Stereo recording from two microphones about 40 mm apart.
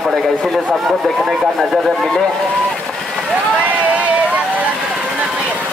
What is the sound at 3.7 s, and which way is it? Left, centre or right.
Vehicle, right.